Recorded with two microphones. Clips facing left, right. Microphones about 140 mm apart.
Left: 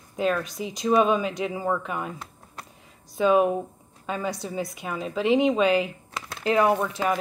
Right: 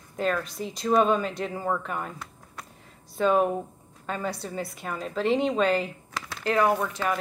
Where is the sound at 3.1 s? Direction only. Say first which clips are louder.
Left 2 dB; 10° left (ahead or behind).